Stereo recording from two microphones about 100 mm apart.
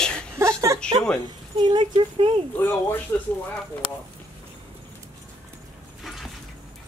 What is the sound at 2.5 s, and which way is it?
Speech, 20° left (ahead or behind).